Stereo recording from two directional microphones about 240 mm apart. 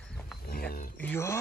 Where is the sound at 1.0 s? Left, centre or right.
Centre.